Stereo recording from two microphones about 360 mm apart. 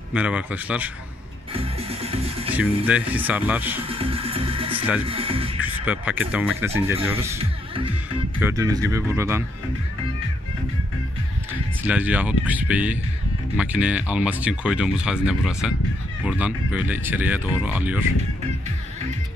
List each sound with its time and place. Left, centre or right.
0.1 s speech: centre
1.5 s speech: centre
2.5 s speech: centre
3.9 s speech: centre
5.6 s speech: centre
11.8 s speech: centre